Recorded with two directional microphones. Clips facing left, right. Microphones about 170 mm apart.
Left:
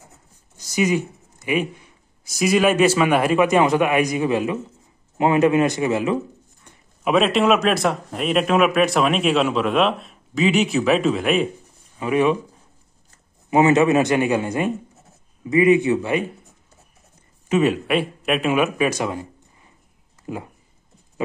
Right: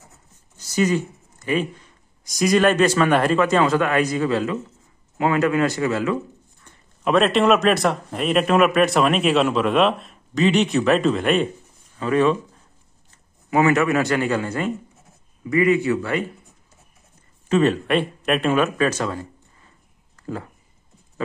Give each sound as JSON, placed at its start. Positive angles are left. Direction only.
{"t": 0.6, "sound": "speech", "side_deg": 15}
{"t": 6.6, "sound": "speech", "side_deg": 5}
{"t": 13.5, "sound": "speech", "side_deg": 20}
{"t": 17.5, "sound": "a man's voice", "side_deg": 10}